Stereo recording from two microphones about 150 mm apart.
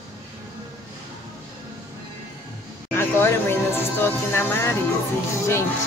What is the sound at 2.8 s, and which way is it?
Music, 15° left (ahead or behind).